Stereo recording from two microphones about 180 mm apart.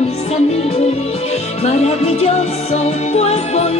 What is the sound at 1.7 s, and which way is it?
Music, 35° left (ahead or behind).